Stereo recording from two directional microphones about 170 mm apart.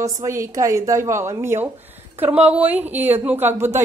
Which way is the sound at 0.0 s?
20° right (ahead or behind).